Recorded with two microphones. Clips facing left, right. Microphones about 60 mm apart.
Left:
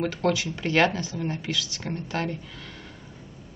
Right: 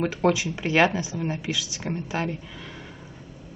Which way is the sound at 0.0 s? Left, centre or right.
Centre.